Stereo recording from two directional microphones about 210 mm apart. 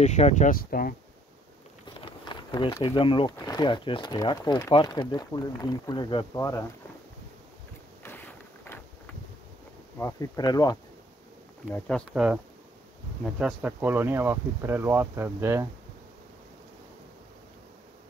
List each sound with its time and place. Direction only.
0.0 s speech: 35° left (ahead or behind)
2.0 s speech: 25° left (ahead or behind)
8.0 s a sound: 10° left (ahead or behind)
9.9 s speech: 15° left (ahead or behind)
12.1 s speech: 5° right (ahead or behind)